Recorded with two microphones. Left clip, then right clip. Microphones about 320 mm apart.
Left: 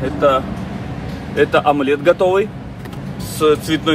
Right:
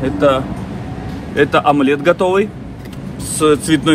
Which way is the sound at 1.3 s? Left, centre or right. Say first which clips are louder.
Right 1 dB; right.